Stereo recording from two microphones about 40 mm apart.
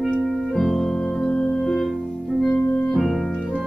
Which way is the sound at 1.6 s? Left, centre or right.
Centre.